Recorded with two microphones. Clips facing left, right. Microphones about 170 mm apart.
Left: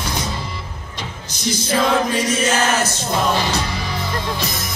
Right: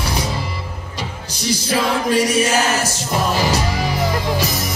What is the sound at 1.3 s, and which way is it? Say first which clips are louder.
Music: even; 35° right (ahead or behind).